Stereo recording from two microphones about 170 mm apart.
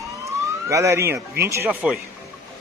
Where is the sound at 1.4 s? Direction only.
15° right (ahead or behind).